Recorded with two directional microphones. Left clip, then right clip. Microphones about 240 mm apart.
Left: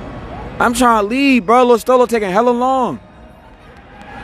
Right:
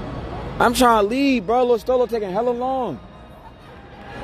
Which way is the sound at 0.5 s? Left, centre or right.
Centre.